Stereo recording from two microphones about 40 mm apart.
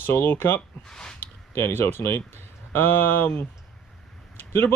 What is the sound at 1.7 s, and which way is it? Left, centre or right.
Speech, left.